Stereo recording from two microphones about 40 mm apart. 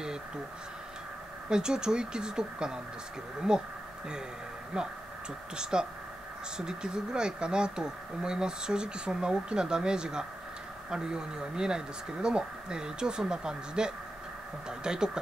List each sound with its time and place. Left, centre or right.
1.5 s speech: centre
4.7 s speech: right